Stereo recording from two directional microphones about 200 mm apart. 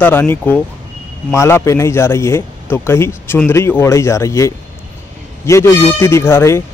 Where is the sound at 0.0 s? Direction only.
10° left (ahead or behind).